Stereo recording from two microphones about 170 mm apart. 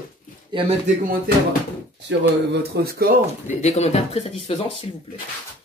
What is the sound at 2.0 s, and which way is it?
Speech, 75° right (ahead or behind).